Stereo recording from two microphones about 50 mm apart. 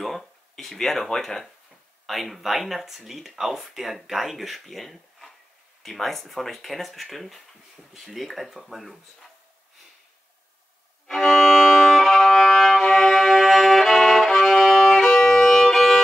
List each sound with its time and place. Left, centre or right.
0.0 s speech: centre
11.1 s violin: centre